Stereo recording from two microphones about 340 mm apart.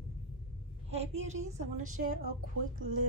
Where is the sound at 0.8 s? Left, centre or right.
Centre.